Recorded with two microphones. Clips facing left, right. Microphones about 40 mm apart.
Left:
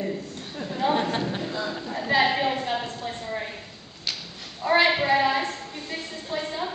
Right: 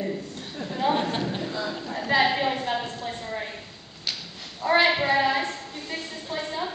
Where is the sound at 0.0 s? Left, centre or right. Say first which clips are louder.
Even; centre.